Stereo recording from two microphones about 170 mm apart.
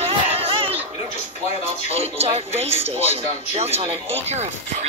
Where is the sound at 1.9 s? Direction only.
35° right (ahead or behind).